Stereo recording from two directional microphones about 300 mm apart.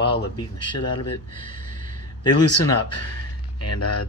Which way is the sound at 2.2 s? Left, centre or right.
Left.